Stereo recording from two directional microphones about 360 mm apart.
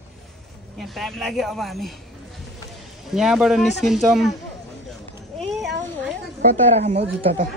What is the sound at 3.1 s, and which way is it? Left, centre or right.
Speech, centre.